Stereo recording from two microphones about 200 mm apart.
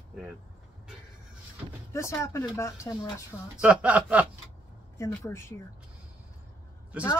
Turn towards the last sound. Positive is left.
turn(degrees=-5)  # may be behind; listen again after turning